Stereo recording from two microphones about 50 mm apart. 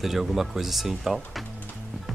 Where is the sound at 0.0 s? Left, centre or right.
Centre.